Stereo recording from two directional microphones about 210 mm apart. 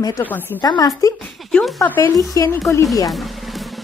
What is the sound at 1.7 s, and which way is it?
Speech, 10° left (ahead or behind).